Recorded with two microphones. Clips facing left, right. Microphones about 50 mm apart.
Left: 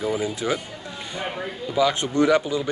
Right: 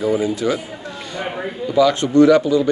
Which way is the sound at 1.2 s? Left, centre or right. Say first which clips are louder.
Right 4 dB; centre.